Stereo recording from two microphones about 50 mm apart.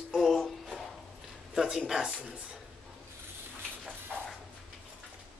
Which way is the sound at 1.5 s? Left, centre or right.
Centre.